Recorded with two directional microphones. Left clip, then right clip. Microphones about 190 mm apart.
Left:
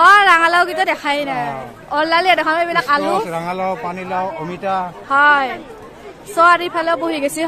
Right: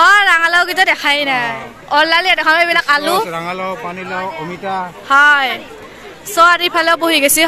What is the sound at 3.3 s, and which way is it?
Speech, 65° left (ahead or behind).